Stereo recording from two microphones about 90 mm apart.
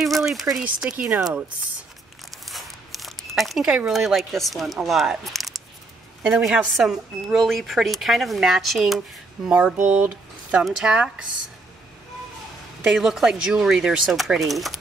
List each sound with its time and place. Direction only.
0.0 s a sound: centre (ahead or behind)
0.7 s speech: 15° right (ahead or behind)
2.4 s a sound: centre (ahead or behind)
3.6 s speech: 10° right (ahead or behind)
9.8 s speech: 15° right (ahead or behind)
12.8 s speech: 5° right (ahead or behind)